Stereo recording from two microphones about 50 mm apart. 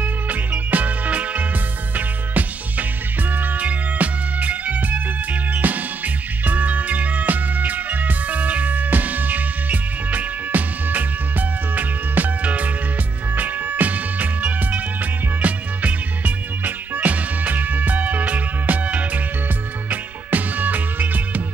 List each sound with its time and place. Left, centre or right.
0.0 s music: right